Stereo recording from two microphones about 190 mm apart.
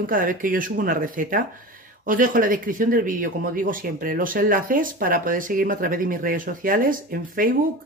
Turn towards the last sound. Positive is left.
turn(degrees=-45)  # may be behind; listen again after turning